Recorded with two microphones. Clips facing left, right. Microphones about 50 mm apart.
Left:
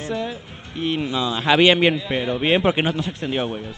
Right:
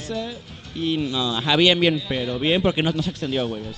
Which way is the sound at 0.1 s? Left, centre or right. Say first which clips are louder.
Left 1 dB; centre.